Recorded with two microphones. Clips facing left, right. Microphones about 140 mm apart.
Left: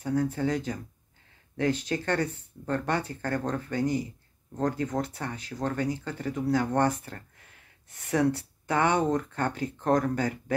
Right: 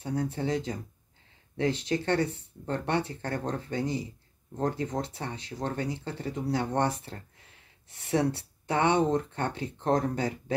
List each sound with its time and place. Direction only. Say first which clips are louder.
0.0 s speech: left 4 dB; 25° right (ahead or behind)